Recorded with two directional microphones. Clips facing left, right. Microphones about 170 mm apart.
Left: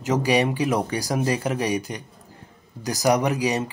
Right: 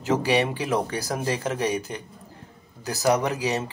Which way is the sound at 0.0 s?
15° left (ahead or behind).